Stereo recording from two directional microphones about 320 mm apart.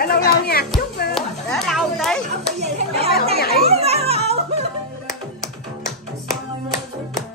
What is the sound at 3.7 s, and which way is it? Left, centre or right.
Music, centre.